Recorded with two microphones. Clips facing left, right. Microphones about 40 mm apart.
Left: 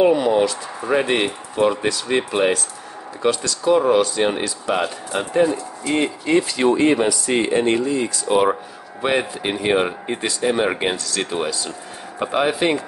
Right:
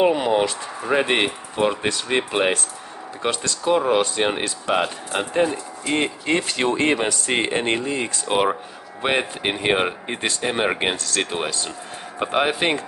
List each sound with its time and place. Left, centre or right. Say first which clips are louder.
0.0 s speech: left 3 dB; right
3.7 s speech: left 3 dB; right